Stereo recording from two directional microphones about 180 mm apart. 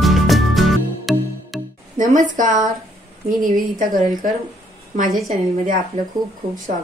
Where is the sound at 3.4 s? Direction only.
50° right (ahead or behind).